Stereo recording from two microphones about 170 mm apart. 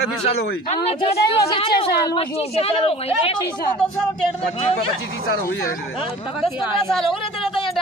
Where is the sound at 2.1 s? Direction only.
35° left (ahead or behind).